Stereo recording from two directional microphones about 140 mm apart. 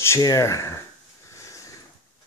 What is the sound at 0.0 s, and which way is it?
Speech, 25° left (ahead or behind).